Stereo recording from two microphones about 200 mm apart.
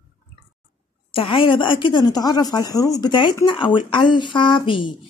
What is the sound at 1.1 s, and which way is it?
A woman's voice, 25° left (ahead or behind).